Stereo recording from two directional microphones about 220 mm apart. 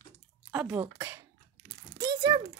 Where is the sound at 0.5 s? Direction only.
5° right (ahead or behind).